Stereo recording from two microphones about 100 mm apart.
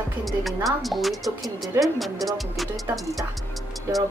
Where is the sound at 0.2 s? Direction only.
Centre (ahead or behind).